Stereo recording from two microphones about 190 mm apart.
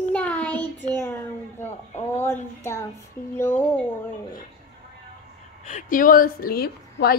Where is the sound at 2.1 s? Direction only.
15° left (ahead or behind).